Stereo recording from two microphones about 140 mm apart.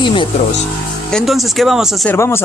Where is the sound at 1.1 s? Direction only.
Centre (ahead or behind).